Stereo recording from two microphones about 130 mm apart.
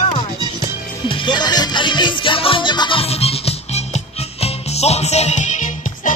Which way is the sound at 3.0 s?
50° left (ahead or behind).